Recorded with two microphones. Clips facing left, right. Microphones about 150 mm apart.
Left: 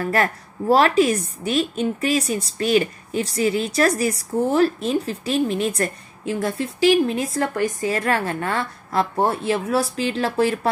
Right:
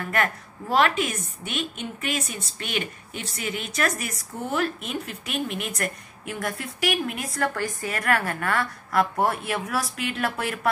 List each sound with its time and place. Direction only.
0.0 s a woman's voice: 35° left (ahead or behind)